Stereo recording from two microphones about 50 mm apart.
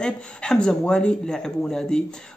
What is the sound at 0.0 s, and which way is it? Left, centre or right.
A man's voice, centre.